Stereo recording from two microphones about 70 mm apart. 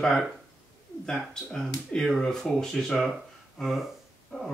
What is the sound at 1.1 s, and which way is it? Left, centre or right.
Speech, centre.